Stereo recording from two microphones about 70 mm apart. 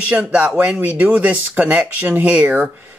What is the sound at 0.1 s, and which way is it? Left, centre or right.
Speech, centre.